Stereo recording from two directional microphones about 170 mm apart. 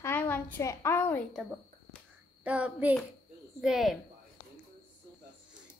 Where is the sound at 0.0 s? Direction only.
10° left (ahead or behind).